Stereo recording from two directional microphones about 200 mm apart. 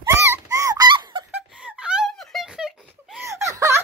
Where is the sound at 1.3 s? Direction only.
5° right (ahead or behind).